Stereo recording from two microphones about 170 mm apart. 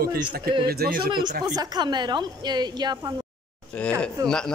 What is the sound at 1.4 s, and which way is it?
Speech, 25° right (ahead or behind).